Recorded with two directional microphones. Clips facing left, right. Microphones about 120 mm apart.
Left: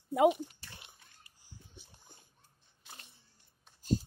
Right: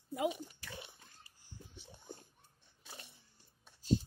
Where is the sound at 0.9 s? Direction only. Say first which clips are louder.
Right 2 dB; 30° right (ahead or behind).